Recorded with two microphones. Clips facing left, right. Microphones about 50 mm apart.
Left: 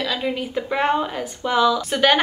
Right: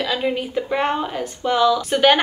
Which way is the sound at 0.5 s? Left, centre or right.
Centre.